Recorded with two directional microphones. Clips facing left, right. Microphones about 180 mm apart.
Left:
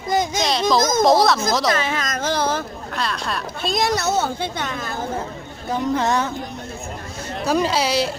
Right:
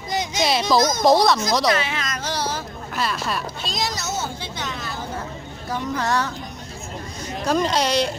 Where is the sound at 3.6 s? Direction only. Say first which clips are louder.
Left 11 dB; 55° left (ahead or behind).